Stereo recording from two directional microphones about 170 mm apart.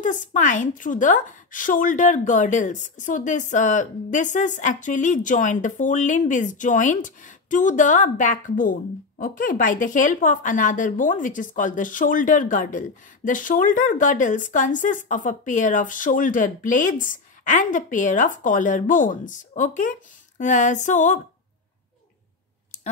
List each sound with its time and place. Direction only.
0.0 s a woman's voice: 50° left (ahead or behind)